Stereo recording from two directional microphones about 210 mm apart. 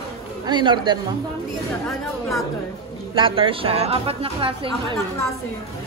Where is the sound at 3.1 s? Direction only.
25° right (ahead or behind).